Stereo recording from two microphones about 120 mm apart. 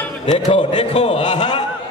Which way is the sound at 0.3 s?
45° left (ahead or behind).